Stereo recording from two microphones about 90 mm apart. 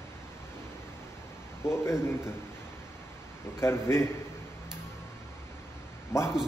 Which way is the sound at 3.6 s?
30° left (ahead or behind).